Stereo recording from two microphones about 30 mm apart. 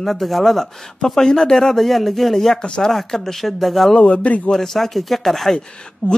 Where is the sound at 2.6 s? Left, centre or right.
Left.